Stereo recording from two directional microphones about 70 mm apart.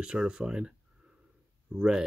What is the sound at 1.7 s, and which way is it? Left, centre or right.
Speech, centre.